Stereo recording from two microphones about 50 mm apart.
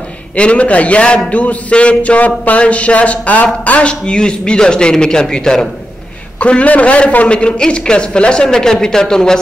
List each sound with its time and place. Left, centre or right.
0.4 s music: left
3.6 s speech: left
6.4 s music: left
7.2 s speech: left